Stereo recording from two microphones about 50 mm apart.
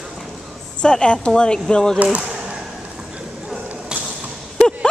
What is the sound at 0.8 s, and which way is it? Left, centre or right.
Speech, centre.